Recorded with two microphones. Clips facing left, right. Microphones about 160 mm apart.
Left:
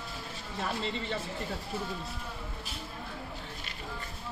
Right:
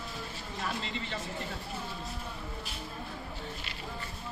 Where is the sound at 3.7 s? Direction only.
45° left (ahead or behind).